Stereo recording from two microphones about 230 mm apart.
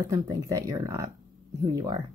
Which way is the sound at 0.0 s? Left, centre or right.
Centre.